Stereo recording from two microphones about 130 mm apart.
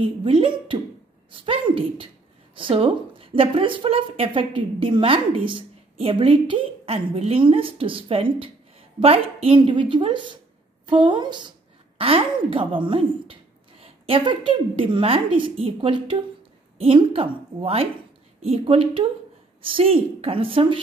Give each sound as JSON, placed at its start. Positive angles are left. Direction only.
{"t": 0.0, "sound": "a woman's voice", "side_deg": -45}